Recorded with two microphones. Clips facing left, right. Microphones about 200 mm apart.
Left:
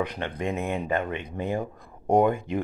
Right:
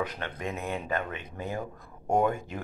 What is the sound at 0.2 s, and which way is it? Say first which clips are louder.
Speech: left 6 dB; 20° left (ahead or behind).